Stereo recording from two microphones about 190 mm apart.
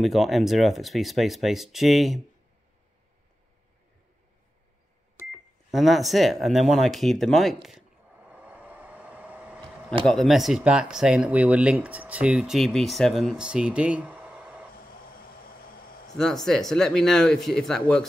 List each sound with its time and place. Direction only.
0.0 s speech: centre (ahead or behind)
5.7 s speech: centre (ahead or behind)
7.6 s vehicle: 5° right (ahead or behind)
10.0 s speech: centre (ahead or behind)
14.8 s a sound: 50° left (ahead or behind)
16.4 s speech: centre (ahead or behind)